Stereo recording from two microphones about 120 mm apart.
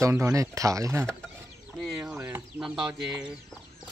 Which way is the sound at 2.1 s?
20° right (ahead or behind).